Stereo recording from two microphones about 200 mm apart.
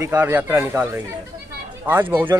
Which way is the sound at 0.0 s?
10° right (ahead or behind).